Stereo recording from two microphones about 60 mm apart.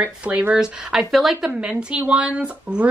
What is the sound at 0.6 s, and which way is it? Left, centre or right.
Speech, centre.